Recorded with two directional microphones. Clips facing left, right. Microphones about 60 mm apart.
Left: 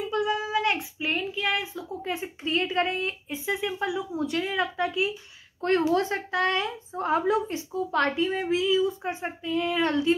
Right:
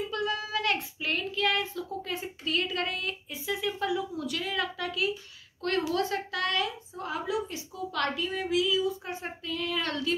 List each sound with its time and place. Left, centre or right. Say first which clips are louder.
0.1 s a woman's voice: left 5 dB; centre